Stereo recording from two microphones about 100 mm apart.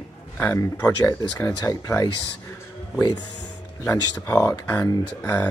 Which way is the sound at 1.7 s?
30° left (ahead or behind).